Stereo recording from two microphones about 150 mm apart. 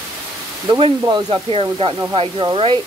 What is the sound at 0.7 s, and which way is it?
Speech, 35° right (ahead or behind).